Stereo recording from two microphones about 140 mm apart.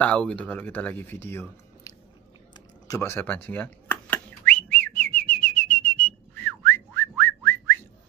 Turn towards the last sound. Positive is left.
turn(degrees=15)  # may be behind; listen again after turning